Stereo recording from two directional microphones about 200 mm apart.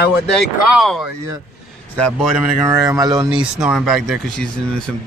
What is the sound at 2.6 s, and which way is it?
Speech, 15° right (ahead or behind).